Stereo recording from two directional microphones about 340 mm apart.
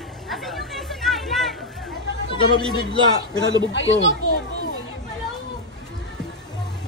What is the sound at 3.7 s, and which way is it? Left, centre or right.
Speech, left.